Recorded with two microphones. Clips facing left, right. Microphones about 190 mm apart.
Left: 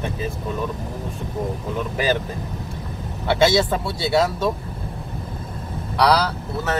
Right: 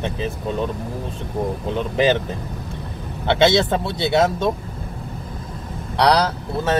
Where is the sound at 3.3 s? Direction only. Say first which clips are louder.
Right 1 dB; 25° right (ahead or behind).